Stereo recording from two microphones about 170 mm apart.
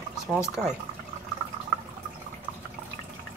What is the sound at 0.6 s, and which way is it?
Speech, 5° right (ahead or behind).